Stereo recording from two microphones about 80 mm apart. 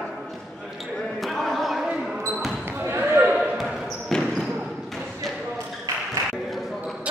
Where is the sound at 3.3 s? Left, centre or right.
Centre.